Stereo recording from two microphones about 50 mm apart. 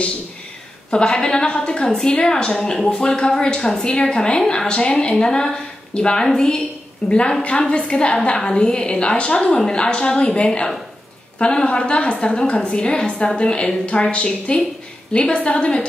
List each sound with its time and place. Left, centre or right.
0.8 s a woman's voice: centre